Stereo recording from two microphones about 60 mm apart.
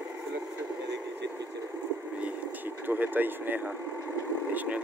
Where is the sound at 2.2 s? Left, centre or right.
Right.